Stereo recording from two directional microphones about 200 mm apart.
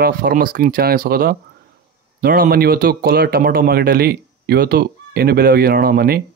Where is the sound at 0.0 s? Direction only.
45° right (ahead or behind).